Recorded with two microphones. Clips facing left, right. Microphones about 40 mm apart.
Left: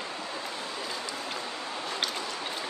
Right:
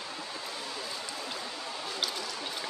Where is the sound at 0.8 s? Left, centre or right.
Left.